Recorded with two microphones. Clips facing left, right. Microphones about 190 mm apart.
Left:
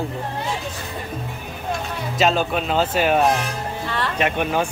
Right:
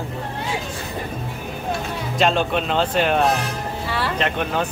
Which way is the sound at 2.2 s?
5° left (ahead or behind).